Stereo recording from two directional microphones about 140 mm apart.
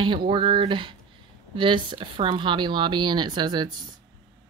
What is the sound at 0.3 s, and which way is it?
Speech, 35° right (ahead or behind).